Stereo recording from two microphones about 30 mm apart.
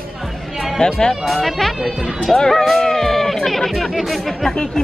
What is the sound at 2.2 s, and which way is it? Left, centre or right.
Speech, centre.